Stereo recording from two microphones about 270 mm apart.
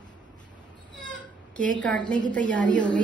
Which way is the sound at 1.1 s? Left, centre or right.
Centre.